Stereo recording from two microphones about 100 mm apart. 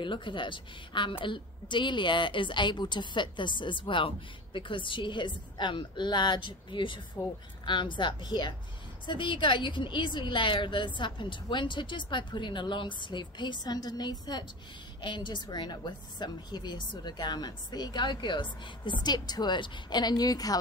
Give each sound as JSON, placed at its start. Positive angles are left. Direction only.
{"t": 0.0, "sound": "a woman's voice", "side_deg": 55}